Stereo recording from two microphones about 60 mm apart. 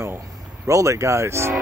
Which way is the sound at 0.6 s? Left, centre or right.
Right.